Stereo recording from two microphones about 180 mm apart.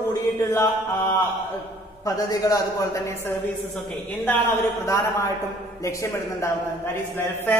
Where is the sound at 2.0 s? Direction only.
20° left (ahead or behind).